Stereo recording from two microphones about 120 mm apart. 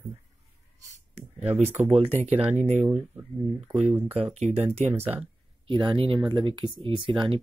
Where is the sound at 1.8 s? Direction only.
65° right (ahead or behind).